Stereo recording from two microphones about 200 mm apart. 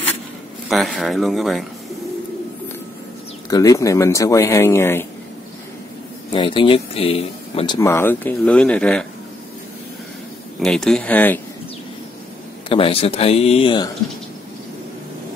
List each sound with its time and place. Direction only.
0.7 s speech: centre (ahead or behind)
3.4 s speech: 15° left (ahead or behind)
6.3 s speech: 25° left (ahead or behind)
7.9 s speech: 10° left (ahead or behind)
10.6 s speech: centre (ahead or behind)
12.6 s speech: 25° left (ahead or behind)